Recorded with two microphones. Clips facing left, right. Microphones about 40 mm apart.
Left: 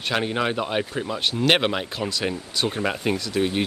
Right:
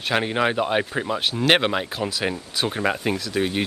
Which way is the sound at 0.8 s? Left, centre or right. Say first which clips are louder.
Right 2 dB; right.